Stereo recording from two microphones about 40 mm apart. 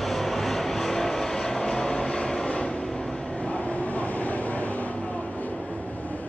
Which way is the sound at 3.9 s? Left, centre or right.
Left.